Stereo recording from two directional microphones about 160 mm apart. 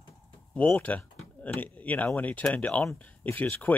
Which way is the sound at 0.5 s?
10° left (ahead or behind).